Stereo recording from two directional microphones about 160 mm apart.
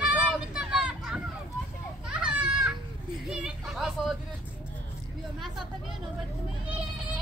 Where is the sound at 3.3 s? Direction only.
5° right (ahead or behind).